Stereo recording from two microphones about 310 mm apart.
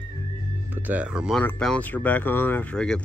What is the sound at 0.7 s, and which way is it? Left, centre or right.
Speech, centre.